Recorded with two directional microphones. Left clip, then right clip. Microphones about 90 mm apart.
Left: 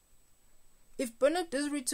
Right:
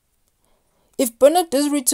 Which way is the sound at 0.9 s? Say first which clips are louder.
Right 15 dB; 40° right (ahead or behind).